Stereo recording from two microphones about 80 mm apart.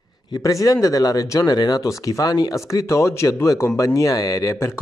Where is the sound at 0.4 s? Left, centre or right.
Left.